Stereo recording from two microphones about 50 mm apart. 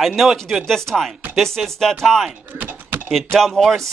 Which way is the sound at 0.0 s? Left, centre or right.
Centre.